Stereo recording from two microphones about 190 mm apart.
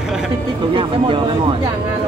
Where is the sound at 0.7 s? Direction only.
25° right (ahead or behind).